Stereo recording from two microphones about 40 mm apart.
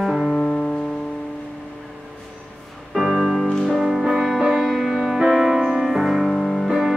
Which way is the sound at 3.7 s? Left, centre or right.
Centre.